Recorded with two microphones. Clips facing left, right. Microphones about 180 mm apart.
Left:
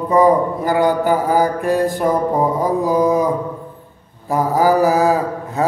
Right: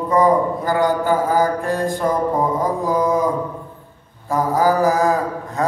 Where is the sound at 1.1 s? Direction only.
15° left (ahead or behind).